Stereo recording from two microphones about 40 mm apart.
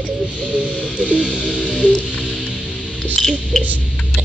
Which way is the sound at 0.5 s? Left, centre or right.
Right.